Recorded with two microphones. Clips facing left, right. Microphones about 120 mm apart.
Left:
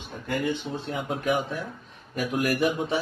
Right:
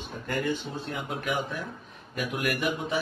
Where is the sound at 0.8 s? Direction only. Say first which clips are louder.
Left 3 dB; 25° left (ahead or behind).